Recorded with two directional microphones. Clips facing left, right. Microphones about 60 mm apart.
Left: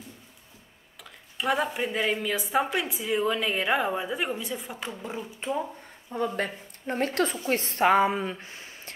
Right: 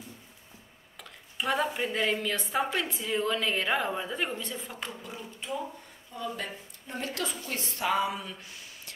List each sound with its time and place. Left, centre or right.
1.4 s a woman's voice: centre
4.8 s speech: left
6.1 s a woman's voice: left